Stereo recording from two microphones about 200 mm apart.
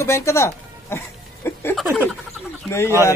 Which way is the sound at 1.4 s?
10° left (ahead or behind).